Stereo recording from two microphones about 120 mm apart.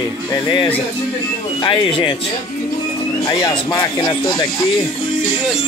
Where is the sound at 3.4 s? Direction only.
30° left (ahead or behind).